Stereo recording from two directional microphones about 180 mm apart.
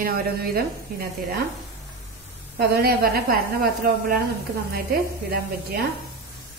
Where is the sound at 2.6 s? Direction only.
60° right (ahead or behind).